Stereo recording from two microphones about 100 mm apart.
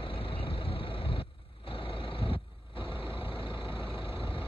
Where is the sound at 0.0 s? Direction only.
65° left (ahead or behind).